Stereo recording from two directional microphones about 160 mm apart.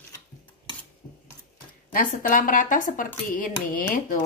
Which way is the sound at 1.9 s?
60° left (ahead or behind).